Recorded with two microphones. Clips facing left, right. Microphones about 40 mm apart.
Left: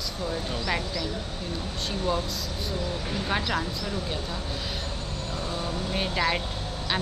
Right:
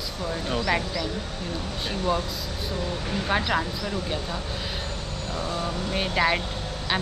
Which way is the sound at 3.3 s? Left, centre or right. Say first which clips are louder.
Right 4 dB; centre.